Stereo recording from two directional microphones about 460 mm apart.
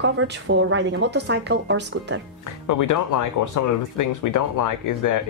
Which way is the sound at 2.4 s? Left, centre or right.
Left.